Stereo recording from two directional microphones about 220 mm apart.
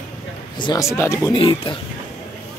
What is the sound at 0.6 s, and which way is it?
Speech, 20° left (ahead or behind).